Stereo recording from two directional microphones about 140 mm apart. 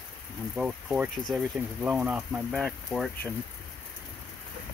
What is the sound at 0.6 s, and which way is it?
Speech, 5° right (ahead or behind).